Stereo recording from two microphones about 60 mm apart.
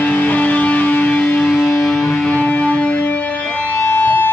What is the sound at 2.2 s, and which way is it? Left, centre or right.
Music, left.